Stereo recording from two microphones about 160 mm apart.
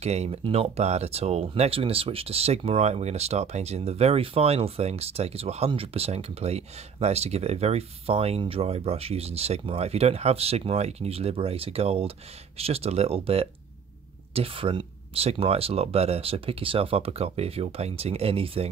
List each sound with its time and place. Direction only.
0.0 s speech: 40° right (ahead or behind)